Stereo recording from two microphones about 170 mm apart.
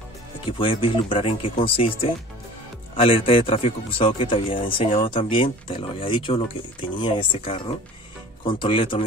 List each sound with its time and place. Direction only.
0.5 s speech: 30° left (ahead or behind)